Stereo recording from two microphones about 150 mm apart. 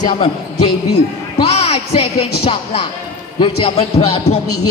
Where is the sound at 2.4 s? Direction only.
40° left (ahead or behind).